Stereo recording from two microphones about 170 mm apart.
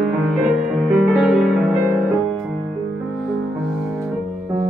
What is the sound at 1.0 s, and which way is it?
Music, 5° right (ahead or behind).